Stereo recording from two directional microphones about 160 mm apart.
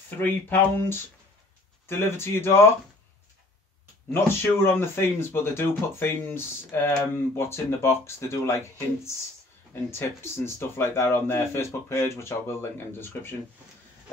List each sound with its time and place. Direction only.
0.2 s speech: 10° left (ahead or behind)
4.1 s speech: 15° left (ahead or behind)